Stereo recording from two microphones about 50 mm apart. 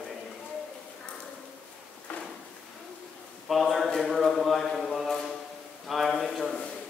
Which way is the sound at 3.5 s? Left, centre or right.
Centre.